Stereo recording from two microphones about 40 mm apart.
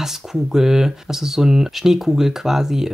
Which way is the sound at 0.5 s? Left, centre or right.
Centre.